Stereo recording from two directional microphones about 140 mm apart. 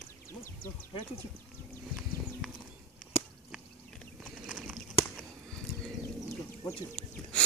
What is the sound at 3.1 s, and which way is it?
Chop, 45° left (ahead or behind).